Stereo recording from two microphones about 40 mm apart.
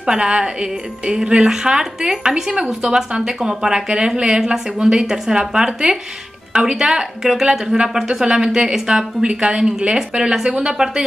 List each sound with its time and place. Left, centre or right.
0.0 s a woman's voice: right
2.5 s a woman's voice: right